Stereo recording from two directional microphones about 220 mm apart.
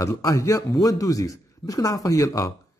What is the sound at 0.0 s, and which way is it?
A man's voice, 15° left (ahead or behind).